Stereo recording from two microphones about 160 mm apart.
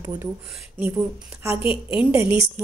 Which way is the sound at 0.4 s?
5° right (ahead or behind).